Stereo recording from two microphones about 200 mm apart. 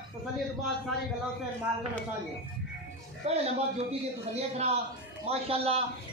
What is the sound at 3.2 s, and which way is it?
Speech, 30° right (ahead or behind).